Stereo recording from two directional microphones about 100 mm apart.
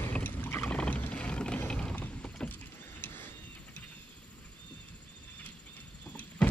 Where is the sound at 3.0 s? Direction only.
20° left (ahead or behind).